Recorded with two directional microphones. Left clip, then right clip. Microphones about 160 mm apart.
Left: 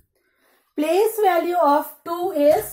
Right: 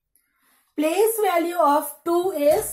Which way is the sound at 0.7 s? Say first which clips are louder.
Left 1 dB; 35° left (ahead or behind).